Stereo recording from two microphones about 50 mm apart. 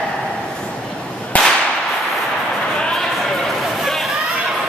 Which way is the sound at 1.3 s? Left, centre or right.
Left.